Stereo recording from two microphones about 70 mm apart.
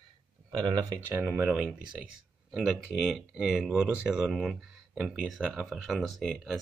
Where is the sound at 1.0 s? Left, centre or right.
Right.